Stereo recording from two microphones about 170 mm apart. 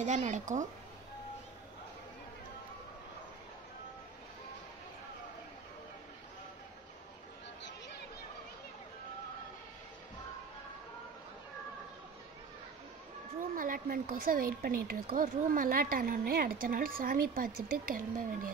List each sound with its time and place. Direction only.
0.0 s speech: 45° right (ahead or behind)
13.6 s a woman's voice: 55° right (ahead or behind)